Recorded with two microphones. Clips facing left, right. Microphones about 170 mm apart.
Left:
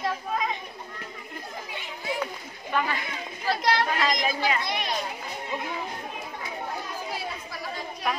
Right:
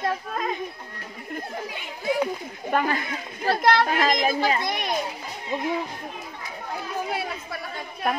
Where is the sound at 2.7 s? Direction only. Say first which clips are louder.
Right 4 dB; 45° right (ahead or behind).